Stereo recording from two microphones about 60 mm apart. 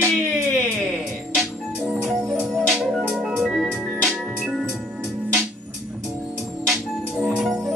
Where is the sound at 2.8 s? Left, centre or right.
Centre.